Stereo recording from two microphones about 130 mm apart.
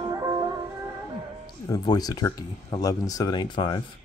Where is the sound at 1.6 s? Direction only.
30° left (ahead or behind).